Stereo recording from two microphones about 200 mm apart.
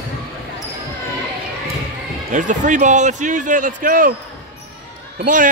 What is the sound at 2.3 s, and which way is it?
A man's voice, 40° right (ahead or behind).